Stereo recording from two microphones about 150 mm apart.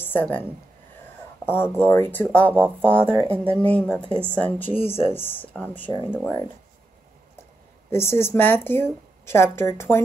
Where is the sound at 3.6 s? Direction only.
10° left (ahead or behind).